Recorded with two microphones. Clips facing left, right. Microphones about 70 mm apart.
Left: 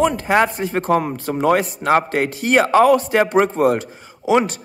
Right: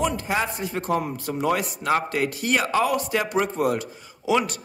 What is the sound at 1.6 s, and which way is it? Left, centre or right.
A man's voice, left.